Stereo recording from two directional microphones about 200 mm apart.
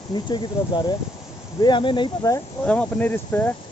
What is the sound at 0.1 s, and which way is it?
Speech, 20° left (ahead or behind).